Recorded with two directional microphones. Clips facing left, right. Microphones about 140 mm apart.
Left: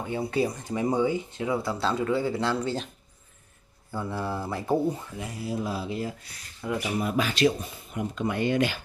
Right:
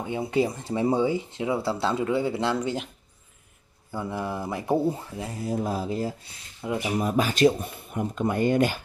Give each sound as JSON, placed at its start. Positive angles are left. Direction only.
{"t": 0.0, "sound": "speech", "side_deg": -20}
{"t": 3.9, "sound": "speech", "side_deg": -15}
{"t": 5.2, "sound": "speech", "side_deg": -40}
{"t": 7.0, "sound": "speech", "side_deg": -40}